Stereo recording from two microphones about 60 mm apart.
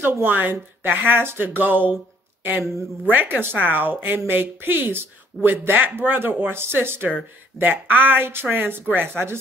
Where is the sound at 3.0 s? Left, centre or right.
Right.